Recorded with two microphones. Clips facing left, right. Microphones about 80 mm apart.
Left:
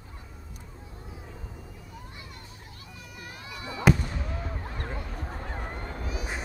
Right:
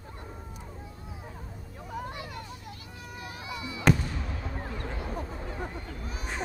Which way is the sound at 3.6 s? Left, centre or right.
Left.